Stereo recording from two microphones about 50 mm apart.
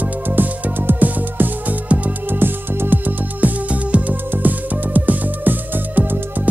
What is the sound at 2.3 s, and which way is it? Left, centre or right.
Music, right.